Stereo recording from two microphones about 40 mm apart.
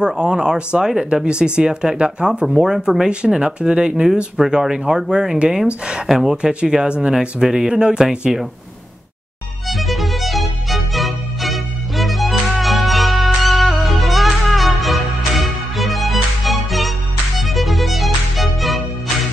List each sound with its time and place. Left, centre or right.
0.0 s speech: right
0.8 s speech: centre
1.2 s speech: right
3.3 s speech: right
6.3 s speech: right
9.7 s music: centre